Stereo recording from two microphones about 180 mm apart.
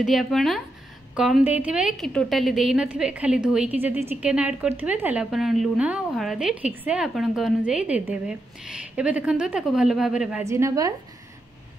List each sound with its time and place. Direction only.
0.0 s a woman's voice: centre (ahead or behind)
10.4 s a woman's voice: 15° right (ahead or behind)